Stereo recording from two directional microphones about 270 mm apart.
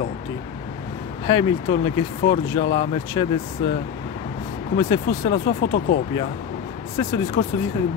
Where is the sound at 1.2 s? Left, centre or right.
Centre.